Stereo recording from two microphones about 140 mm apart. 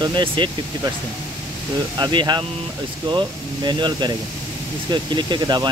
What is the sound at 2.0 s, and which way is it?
Speech, 30° right (ahead or behind).